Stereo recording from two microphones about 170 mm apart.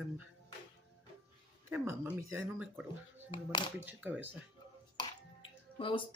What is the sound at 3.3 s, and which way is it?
Speech, 30° left (ahead or behind).